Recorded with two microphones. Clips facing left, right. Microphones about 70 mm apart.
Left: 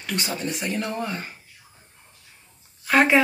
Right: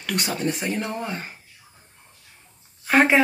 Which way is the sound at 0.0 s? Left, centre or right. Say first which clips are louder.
Right 2 dB; right.